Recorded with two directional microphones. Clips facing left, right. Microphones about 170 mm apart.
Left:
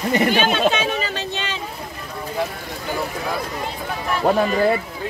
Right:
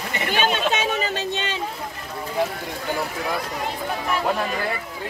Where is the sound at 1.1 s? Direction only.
50° right (ahead or behind).